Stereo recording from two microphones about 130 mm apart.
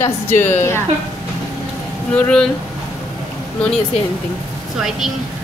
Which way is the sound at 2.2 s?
5° left (ahead or behind).